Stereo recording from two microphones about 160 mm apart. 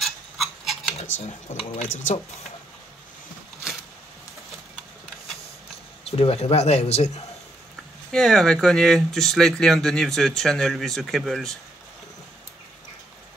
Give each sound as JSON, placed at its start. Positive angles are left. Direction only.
{"t": 0.0, "sound": "toothbrush", "side_deg": 0}
{"t": 0.9, "sound": "speech", "side_deg": 40}
{"t": 6.0, "sound": "speech", "side_deg": 40}
{"t": 8.1, "sound": "speech", "side_deg": 5}